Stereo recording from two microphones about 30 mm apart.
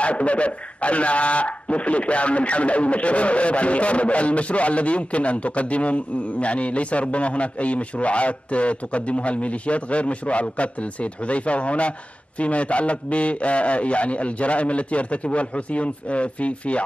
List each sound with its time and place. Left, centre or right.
0.0 s speech: left